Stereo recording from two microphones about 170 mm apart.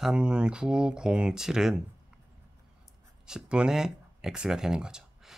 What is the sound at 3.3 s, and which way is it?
Speech, 5° right (ahead or behind).